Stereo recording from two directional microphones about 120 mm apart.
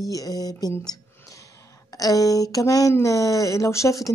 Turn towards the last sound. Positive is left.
turn(degrees=25)  # may be behind; listen again after turning